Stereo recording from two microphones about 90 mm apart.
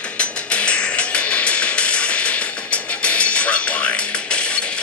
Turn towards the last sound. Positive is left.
turn(degrees=10)  # may be behind; listen again after turning